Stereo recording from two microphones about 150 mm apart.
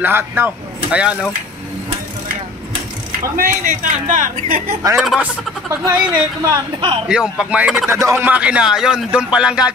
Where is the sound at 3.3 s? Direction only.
65° right (ahead or behind).